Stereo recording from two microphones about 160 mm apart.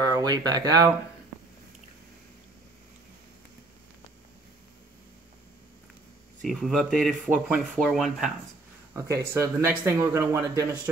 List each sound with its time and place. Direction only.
0.0 s speech: 25° right (ahead or behind)
6.4 s speech: centre (ahead or behind)
8.9 s speech: 15° right (ahead or behind)